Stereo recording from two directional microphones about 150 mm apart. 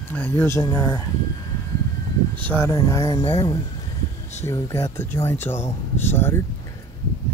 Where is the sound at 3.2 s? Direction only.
40° left (ahead or behind).